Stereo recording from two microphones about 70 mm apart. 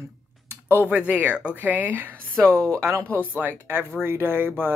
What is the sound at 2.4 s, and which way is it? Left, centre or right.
Speech, centre.